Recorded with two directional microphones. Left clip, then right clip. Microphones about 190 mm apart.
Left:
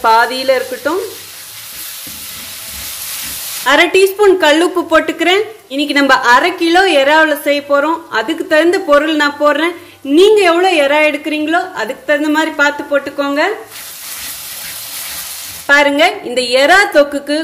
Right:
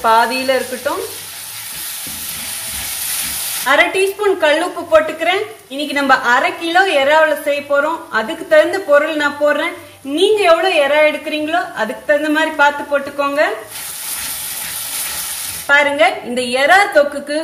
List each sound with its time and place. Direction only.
0.0 s a woman's voice: 45° left (ahead or behind)
3.6 s a woman's voice: 55° left (ahead or behind)
15.6 s a woman's voice: 50° left (ahead or behind)